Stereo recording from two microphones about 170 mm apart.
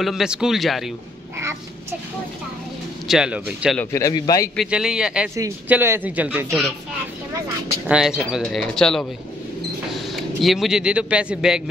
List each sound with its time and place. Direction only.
0.0 s speech: 5° right (ahead or behind)
1.4 s a sound: 15° right (ahead or behind)
3.1 s speech: 5° right (ahead or behind)
3.7 s speech: 15° left (ahead or behind)
4.6 s speech: 5° right (ahead or behind)
7.9 s speech: 5° right (ahead or behind)